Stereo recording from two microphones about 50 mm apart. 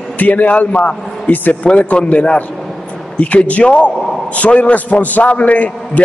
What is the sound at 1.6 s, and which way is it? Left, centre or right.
A man's voice, left.